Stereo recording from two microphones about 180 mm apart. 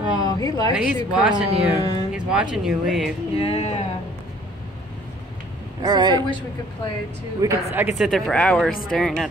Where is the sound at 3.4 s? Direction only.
35° left (ahead or behind).